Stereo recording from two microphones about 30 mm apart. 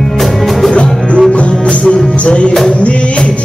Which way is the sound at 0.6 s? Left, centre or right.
Left.